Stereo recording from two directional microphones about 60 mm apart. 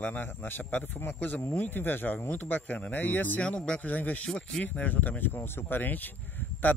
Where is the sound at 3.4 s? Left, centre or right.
Centre.